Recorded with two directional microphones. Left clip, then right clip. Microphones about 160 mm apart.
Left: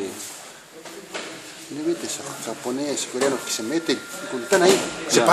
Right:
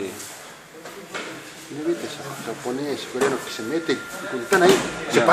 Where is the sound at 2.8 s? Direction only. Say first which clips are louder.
Even; 70° left (ahead or behind).